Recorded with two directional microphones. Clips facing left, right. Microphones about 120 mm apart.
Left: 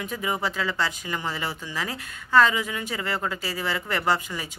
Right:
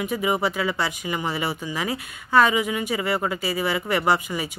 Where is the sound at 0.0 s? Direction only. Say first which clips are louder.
Right 5 dB; 15° right (ahead or behind).